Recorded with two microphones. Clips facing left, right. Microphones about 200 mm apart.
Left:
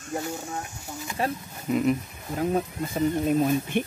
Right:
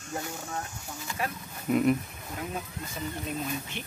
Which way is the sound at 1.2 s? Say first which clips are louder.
Left 6 dB; 30° left (ahead or behind).